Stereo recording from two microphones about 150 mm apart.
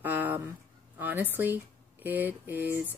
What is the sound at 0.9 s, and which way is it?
Speech, 10° right (ahead or behind).